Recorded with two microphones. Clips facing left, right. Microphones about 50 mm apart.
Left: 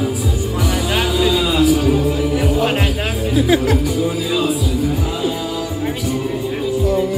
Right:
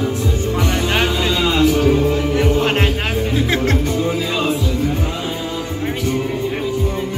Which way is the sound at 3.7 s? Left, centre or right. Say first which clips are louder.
Left 1 dB; right.